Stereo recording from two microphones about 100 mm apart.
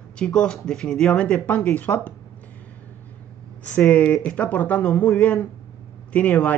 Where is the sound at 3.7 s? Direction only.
15° left (ahead or behind).